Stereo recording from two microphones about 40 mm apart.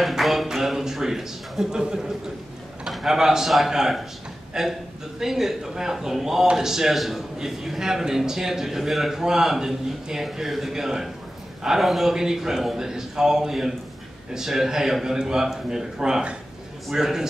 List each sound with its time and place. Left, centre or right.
0.0 s a man's voice: centre
16.0 s a man's voice: right